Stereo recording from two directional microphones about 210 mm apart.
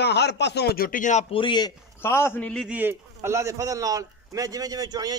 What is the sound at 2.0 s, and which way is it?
Speech, 10° left (ahead or behind).